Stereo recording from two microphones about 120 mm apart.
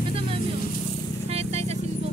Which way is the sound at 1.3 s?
60° right (ahead or behind).